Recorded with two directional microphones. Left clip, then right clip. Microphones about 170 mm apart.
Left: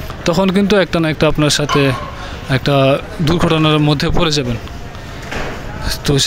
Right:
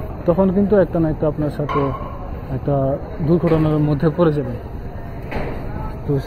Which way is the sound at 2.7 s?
20° left (ahead or behind).